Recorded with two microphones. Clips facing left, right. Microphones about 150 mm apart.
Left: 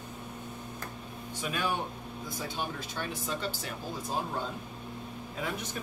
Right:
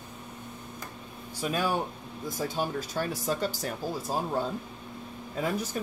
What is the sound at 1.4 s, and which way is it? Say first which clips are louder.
Speech: right 4 dB; 35° right (ahead or behind).